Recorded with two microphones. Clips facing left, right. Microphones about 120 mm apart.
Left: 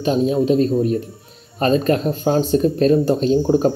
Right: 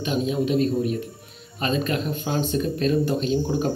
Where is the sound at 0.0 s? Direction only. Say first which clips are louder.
Left 7 dB; 35° left (ahead or behind).